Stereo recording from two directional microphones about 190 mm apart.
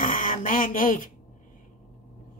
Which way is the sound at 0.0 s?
45° left (ahead or behind).